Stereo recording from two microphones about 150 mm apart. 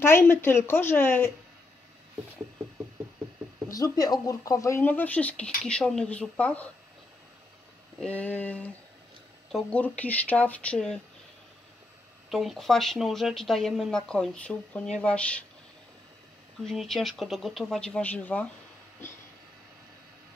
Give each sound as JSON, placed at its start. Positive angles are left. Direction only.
{"t": 0.0, "sound": "speech", "side_deg": 15}
{"t": 3.6, "sound": "speech", "side_deg": 25}
{"t": 8.0, "sound": "speech", "side_deg": 10}
{"t": 12.3, "sound": "speech", "side_deg": 0}
{"t": 16.6, "sound": "speech", "side_deg": 0}